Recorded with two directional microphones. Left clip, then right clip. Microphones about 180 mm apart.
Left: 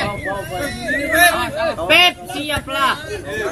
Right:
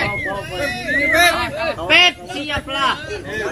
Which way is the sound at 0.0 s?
50° left (ahead or behind).